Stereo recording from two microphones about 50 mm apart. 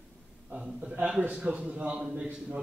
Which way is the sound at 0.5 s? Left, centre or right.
Centre.